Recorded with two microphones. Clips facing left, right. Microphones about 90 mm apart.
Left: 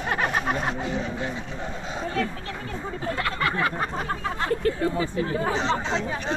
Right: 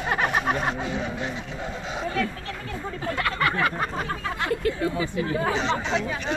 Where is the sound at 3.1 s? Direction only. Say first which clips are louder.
Right 2 dB; 30° left (ahead or behind).